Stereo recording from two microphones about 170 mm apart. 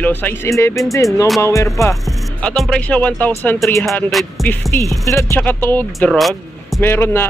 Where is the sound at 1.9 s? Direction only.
5° left (ahead or behind).